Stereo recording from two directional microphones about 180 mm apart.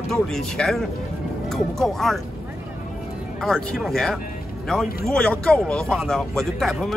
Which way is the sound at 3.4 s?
Centre (ahead or behind).